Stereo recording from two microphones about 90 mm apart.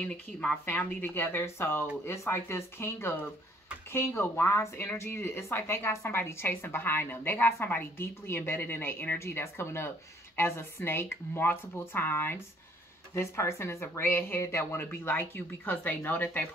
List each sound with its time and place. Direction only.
0.0 s speech: 20° left (ahead or behind)